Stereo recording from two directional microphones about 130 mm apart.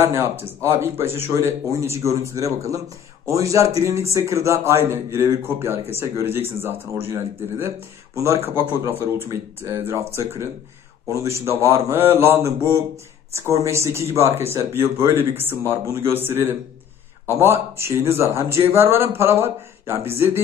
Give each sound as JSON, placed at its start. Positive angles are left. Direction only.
{"t": 0.0, "sound": "a man's voice", "side_deg": -20}